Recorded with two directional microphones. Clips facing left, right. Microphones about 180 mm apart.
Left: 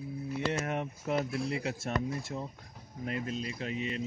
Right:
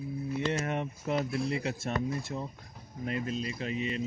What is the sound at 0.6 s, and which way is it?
Speech, 5° left (ahead or behind).